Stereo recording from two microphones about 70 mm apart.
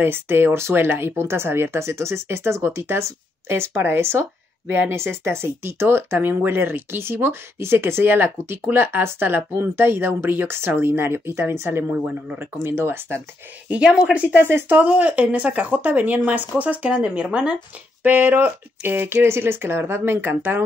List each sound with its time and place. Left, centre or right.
0.0 s speech: right
13.7 s a woman's voice: centre
14.4 s speech: right
14.9 s speech: centre